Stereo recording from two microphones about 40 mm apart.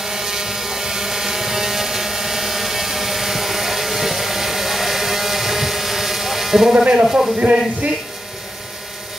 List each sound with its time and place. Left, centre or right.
0.0 s ratchet: centre
6.7 s speech: right
7.3 s speech: right